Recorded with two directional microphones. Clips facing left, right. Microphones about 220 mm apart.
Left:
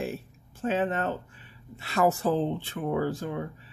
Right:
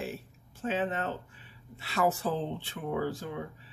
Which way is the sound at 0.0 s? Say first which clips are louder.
Left 5 dB; 45° left (ahead or behind).